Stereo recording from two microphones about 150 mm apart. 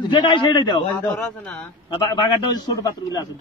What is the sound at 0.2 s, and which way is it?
Speech, 30° left (ahead or behind).